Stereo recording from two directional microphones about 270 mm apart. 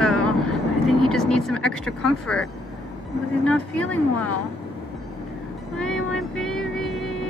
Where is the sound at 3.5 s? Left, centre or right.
Centre.